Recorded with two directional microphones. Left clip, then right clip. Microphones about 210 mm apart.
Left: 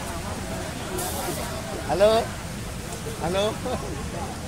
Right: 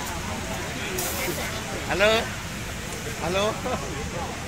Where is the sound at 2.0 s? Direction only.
40° left (ahead or behind).